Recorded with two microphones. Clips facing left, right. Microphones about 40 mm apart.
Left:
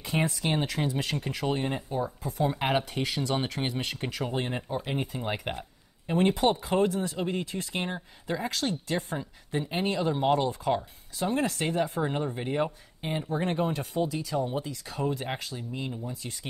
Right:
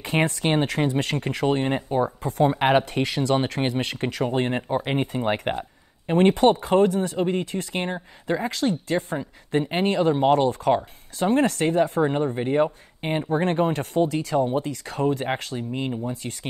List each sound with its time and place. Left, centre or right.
0.0 s speech: right
2.4 s speech: right
4.2 s speech: right
11.1 s speech: right
12.0 s speech: right
13.0 s speech: right